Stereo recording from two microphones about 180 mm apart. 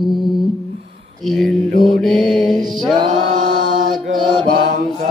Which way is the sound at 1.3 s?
Centre (ahead or behind).